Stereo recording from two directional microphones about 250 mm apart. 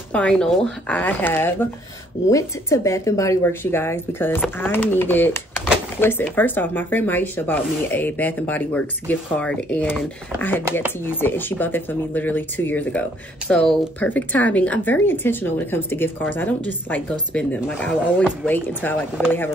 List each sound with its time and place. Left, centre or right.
0.1 s speech: centre